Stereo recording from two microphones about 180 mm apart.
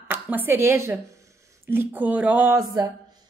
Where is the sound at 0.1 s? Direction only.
10° right (ahead or behind).